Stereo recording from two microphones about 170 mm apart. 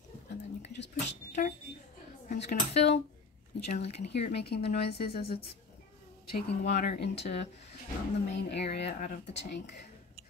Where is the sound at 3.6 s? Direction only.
40° left (ahead or behind).